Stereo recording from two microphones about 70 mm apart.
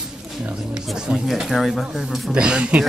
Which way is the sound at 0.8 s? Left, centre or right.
Centre.